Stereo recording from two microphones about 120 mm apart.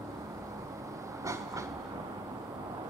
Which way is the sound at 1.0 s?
25° right (ahead or behind).